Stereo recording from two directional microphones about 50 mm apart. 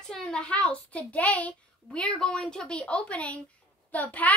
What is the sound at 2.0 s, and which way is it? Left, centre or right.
A woman's voice, centre.